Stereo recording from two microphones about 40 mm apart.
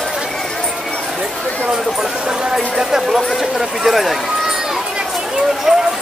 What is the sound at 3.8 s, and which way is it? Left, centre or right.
Speech, centre.